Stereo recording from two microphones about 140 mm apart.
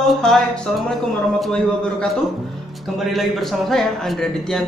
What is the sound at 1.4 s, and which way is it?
A man's voice, 5° left (ahead or behind).